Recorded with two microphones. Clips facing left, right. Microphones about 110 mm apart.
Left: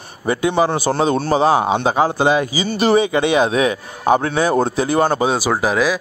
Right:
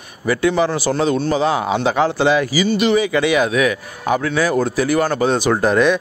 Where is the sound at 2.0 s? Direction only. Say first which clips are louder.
Right 1 dB; 15° left (ahead or behind).